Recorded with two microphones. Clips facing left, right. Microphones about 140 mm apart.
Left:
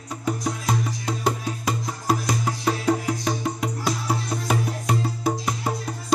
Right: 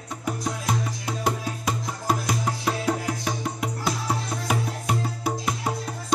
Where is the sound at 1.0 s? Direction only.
Centre (ahead or behind).